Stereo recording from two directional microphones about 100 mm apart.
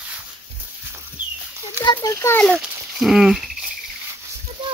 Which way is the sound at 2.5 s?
15° right (ahead or behind).